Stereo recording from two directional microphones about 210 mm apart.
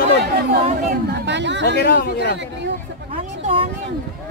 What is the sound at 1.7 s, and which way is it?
Speech, 50° left (ahead or behind).